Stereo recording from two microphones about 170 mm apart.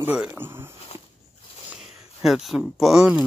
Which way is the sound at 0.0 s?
10° right (ahead or behind).